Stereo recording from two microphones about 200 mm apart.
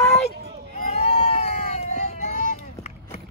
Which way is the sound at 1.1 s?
30° left (ahead or behind).